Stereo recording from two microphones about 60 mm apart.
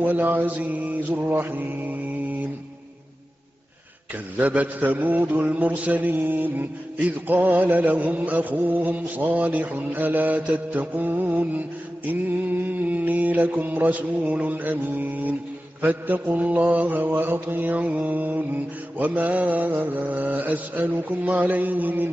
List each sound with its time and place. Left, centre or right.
0.0 s mantra: right
4.4 s mantra: right